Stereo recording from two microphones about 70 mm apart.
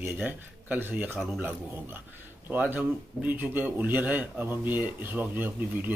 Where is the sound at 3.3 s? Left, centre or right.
Right.